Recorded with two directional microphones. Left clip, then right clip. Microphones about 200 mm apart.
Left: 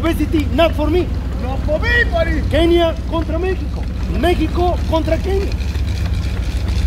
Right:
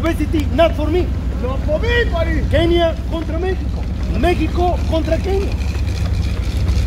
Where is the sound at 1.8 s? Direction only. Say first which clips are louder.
Left 4 dB; 5° left (ahead or behind).